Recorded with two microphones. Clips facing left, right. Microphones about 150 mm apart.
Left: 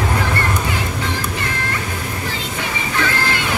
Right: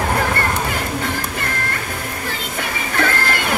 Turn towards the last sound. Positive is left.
turn(degrees=-50)  # may be behind; listen again after turning